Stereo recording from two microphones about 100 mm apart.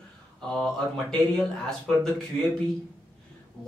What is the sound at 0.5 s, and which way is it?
Speech, 5° left (ahead or behind).